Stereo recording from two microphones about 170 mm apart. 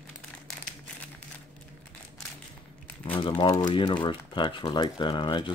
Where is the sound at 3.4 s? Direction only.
25° left (ahead or behind).